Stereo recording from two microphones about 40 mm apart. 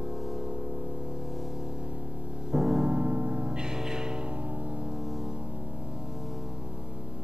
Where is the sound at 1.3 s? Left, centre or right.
Centre; by 2.5 s right.